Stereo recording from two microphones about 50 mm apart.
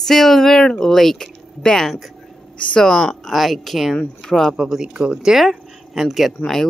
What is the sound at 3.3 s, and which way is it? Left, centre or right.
Speech, centre.